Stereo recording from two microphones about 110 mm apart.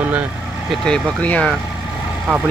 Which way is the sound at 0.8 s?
10° left (ahead or behind).